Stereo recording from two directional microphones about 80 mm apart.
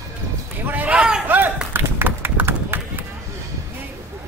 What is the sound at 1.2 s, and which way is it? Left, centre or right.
Run, right.